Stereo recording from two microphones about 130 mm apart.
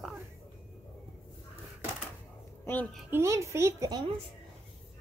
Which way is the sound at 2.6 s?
15° left (ahead or behind).